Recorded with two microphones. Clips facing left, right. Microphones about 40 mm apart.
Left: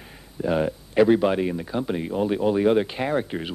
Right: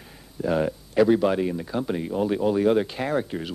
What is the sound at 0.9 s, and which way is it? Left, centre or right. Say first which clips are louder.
Speech: left 1 dB; left.